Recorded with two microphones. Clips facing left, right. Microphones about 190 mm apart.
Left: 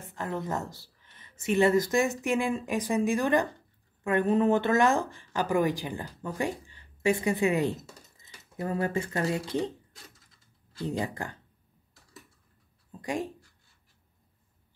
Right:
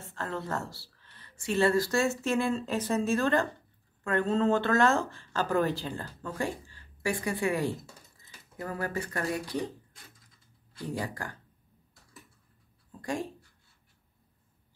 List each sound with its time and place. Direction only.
0.0 s speech: 15° left (ahead or behind)
10.8 s speech: 20° left (ahead or behind)
12.9 s speech: 20° left (ahead or behind)